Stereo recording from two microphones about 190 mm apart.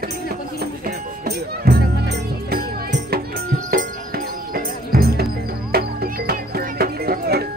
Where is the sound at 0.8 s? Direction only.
55° right (ahead or behind).